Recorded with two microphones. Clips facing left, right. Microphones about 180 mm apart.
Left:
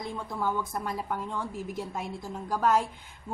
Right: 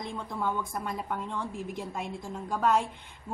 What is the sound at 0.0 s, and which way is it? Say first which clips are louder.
A woman's voice: left 1 dB; 5° left (ahead or behind).